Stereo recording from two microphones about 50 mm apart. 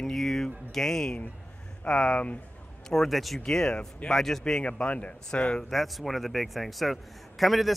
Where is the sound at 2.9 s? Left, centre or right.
Centre.